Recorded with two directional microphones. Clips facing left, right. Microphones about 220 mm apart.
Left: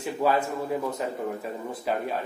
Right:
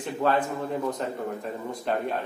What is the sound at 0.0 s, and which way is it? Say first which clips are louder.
Speech: even; 10° left (ahead or behind).